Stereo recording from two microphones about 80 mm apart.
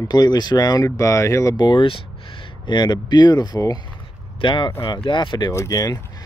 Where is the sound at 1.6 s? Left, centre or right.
Left.